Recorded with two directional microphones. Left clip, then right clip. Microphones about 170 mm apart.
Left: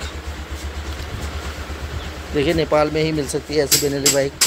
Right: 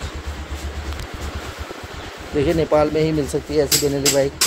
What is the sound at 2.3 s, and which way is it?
Speech, 10° right (ahead or behind).